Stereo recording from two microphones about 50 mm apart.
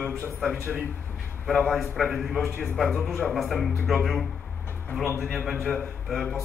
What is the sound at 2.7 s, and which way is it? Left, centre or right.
A man's voice, centre.